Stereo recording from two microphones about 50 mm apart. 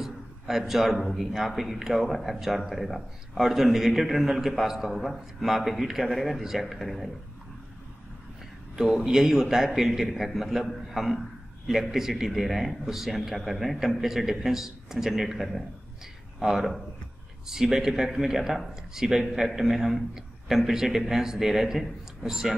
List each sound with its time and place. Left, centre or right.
0.0 s a man's voice: centre
8.7 s a man's voice: centre